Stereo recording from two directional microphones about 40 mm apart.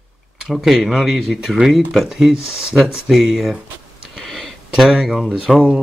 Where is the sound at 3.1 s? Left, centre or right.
Centre.